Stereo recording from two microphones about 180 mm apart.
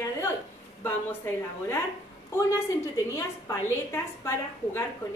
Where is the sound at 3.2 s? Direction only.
15° left (ahead or behind).